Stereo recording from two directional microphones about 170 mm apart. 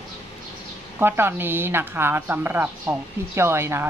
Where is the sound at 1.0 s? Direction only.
15° right (ahead or behind).